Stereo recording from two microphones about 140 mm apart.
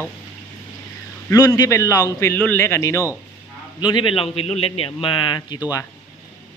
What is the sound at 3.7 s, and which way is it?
A man's voice, 35° left (ahead or behind).